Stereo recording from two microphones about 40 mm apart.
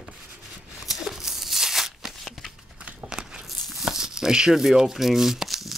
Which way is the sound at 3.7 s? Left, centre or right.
Centre.